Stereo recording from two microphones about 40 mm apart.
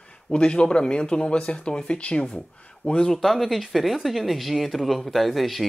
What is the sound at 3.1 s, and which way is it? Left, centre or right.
Speech, centre.